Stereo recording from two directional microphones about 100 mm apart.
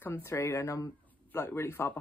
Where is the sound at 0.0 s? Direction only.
25° left (ahead or behind).